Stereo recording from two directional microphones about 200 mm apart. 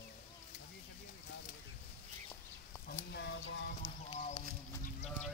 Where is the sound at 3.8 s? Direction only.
25° left (ahead or behind).